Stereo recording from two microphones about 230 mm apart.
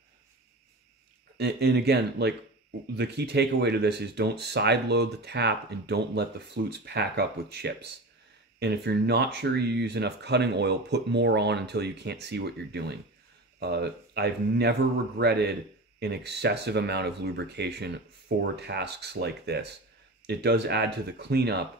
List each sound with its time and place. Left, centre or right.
1.4 s speech: right